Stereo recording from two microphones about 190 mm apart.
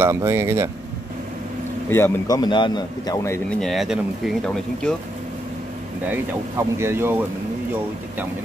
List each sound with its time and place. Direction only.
0.0 s speech: 15° right (ahead or behind)
1.9 s a man's voice: 10° left (ahead or behind)
3.4 s speech: 5° left (ahead or behind)
6.8 s speech: 10° right (ahead or behind)